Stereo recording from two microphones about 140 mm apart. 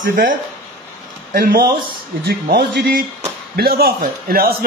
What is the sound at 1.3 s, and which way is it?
A man's voice, 90° right.